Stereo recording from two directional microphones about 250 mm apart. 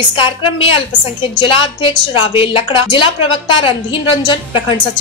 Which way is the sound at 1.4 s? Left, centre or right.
Left.